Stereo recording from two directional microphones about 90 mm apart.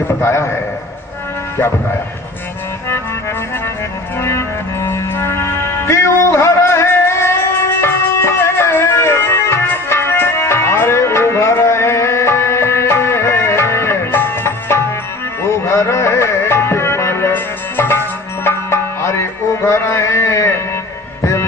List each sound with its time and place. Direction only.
0.2 s a man's voice: 30° left (ahead or behind)
4.2 s music: 30° left (ahead or behind)